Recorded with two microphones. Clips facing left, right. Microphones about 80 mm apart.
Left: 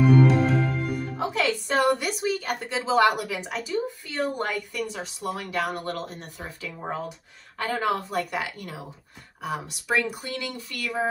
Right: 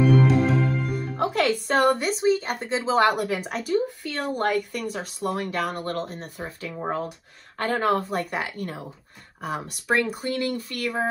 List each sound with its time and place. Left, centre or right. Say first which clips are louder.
0.0 s music: even; centre
1.1 s music: right 4 dB; right
2.0 s speech: right 5 dB; right
4.0 s speech: right 2 dB; right